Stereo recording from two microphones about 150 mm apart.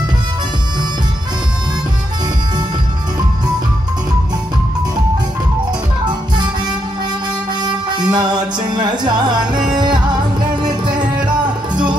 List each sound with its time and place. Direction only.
7.6 s music: 30° right (ahead or behind)